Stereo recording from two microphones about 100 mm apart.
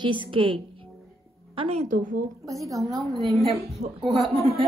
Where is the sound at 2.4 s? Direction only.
35° right (ahead or behind).